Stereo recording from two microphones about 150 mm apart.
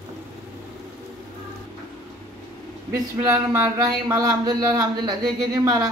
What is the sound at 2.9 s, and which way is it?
Speech, 20° right (ahead or behind).